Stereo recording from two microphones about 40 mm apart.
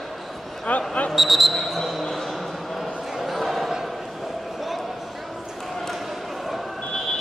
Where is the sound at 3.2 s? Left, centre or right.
Centre.